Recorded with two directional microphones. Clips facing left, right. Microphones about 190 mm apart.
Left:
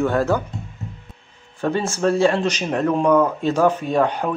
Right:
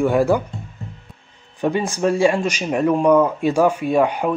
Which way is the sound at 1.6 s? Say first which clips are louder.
Right 1 dB; 15° right (ahead or behind).